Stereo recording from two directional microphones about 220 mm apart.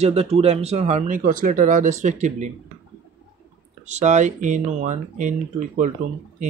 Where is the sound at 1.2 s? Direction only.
40° right (ahead or behind).